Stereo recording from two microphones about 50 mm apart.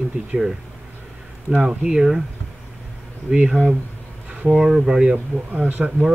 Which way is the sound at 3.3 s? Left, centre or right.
Centre.